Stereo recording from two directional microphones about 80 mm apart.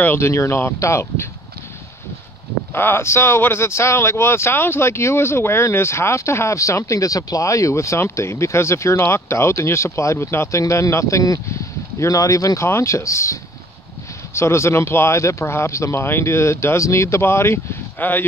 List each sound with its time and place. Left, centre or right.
0.0 s speech: left
2.7 s speech: left
17.9 s speech: left